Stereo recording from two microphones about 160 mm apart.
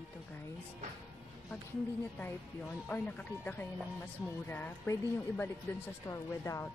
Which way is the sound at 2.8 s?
10° left (ahead or behind).